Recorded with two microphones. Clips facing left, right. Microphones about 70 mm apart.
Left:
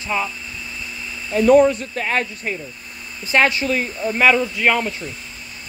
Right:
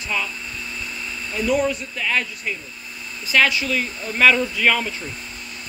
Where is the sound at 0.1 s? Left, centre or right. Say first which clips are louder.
Left 3 dB; left.